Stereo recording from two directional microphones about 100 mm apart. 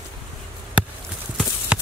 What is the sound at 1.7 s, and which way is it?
Clip-clop, 10° right (ahead or behind).